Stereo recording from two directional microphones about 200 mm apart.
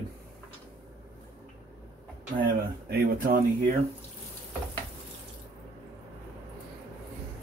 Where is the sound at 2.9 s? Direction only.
40° right (ahead or behind).